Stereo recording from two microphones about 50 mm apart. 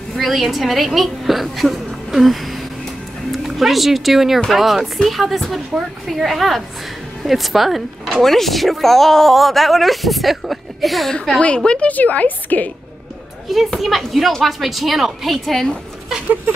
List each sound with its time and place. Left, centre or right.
0.2 s speech: centre
11.3 s a woman's voice: centre
11.9 s a woman's voice: left
13.5 s speech: centre